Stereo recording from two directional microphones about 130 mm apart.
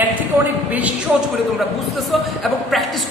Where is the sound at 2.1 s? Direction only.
Centre (ahead or behind).